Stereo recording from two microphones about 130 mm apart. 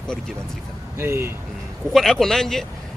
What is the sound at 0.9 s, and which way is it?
Speech, 20° right (ahead or behind).